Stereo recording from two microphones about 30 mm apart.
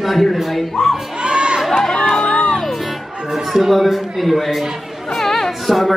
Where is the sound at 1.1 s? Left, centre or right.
Right.